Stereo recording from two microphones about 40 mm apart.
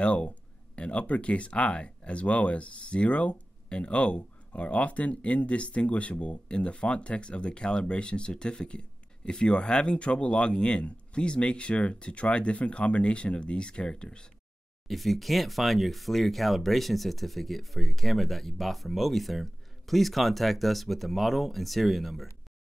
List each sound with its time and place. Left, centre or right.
0.0 s speech: left
14.9 s speech: centre